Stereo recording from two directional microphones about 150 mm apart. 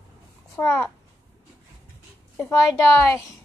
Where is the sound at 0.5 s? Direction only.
20° left (ahead or behind).